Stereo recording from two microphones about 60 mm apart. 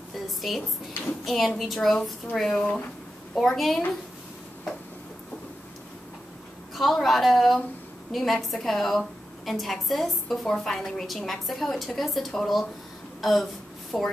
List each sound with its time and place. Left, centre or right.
0.4 s a woman's voice: centre
2.6 s speech: left
3.3 s a woman's voice: centre
6.7 s a woman's voice: centre
13.9 s speech: centre